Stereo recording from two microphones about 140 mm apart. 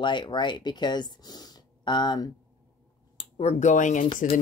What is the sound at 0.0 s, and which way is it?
Speech, 35° left (ahead or behind).